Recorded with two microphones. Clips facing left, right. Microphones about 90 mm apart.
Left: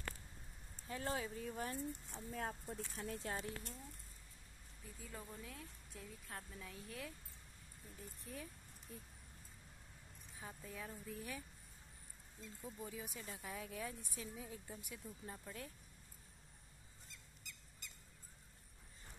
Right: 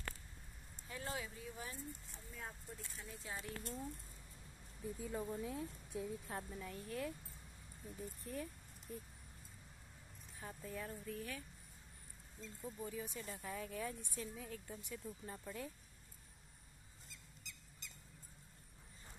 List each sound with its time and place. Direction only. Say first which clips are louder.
0.8 s speech: left 3 dB; 35° left (ahead or behind); by 3.3 s 65° left (ahead or behind)
4.8 s a woman's voice: right 10 dB; 20° right (ahead or behind)
6.6 s speech: right 6 dB; centre (ahead or behind)
8.3 s speech: right 4 dB; centre (ahead or behind)
10.4 s speech: right 3 dB; centre (ahead or behind)
11.1 s speech: right 1 dB; 15° left (ahead or behind)
12.4 s speech: right 2 dB; centre (ahead or behind)
15.0 s speech: right 1 dB; centre (ahead or behind)
17.4 s owl: right 1 dB; centre (ahead or behind)